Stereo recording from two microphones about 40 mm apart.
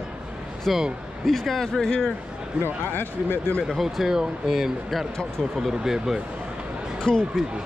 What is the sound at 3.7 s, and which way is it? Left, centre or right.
Speech, centre.